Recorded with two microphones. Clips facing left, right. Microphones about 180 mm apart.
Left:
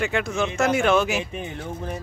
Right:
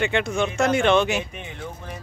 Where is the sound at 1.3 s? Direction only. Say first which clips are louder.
Left 4 dB; 40° left (ahead or behind).